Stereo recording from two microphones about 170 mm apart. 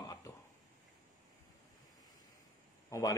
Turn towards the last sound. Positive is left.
turn(degrees=20)  # may be behind; listen again after turning